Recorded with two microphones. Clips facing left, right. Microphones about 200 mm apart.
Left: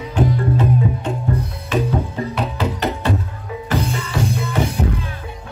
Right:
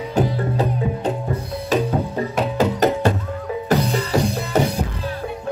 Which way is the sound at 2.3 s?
45° right (ahead or behind).